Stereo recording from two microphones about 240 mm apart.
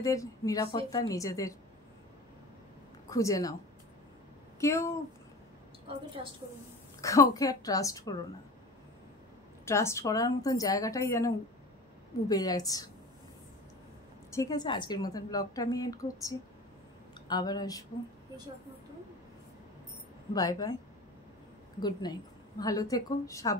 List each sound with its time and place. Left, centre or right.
0.0 s a woman's voice: centre
3.1 s a woman's voice: centre
4.6 s a woman's voice: centre
7.0 s a woman's voice: centre
9.7 s a woman's voice: centre
14.3 s a woman's voice: centre
20.3 s a woman's voice: centre
21.7 s a woman's voice: centre